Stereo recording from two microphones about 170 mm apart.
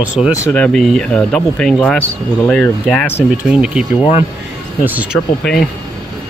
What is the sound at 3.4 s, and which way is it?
Speech, 5° right (ahead or behind).